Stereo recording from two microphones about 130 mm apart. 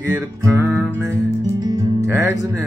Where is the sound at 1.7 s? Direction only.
25° right (ahead or behind).